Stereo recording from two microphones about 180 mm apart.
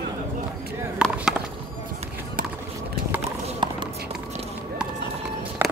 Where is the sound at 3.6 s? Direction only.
25° right (ahead or behind).